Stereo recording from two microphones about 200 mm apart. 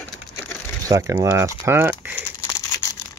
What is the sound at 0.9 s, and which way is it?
Speech, 15° right (ahead or behind).